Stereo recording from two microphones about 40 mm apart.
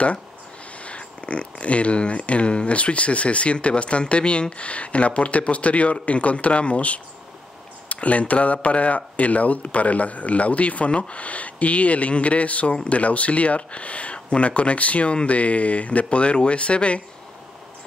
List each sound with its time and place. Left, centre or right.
0.8 s speech: left